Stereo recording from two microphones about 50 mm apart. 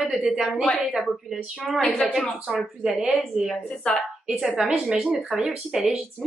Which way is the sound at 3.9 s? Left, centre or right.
Centre.